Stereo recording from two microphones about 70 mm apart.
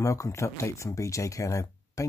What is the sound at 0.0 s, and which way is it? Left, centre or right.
Speech, left.